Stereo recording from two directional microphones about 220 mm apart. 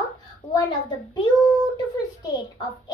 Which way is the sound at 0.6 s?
20° left (ahead or behind).